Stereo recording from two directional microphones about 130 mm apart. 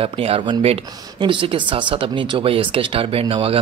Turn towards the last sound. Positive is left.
turn(degrees=-45)  # may be behind; listen again after turning